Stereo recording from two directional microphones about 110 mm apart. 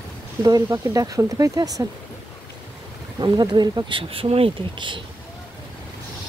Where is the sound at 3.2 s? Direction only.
40° right (ahead or behind).